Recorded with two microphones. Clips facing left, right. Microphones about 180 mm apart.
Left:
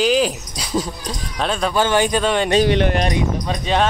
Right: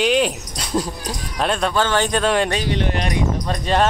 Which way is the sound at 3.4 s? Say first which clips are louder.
Even; centre (ahead or behind).